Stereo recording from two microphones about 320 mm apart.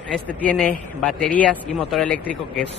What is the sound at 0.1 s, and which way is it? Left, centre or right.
Speech, centre.